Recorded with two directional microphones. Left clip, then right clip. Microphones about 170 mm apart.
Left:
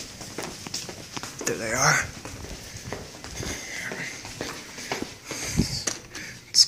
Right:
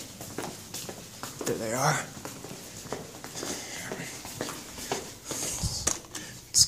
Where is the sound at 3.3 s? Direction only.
25° right (ahead or behind).